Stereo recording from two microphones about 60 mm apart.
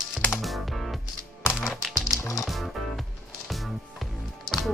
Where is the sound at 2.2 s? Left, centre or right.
Left.